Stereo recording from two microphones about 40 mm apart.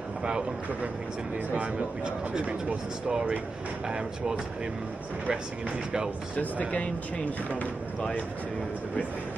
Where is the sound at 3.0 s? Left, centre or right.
Centre.